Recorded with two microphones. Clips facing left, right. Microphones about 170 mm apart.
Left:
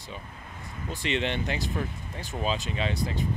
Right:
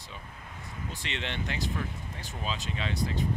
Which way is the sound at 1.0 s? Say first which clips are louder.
Left 8 dB; 10° left (ahead or behind).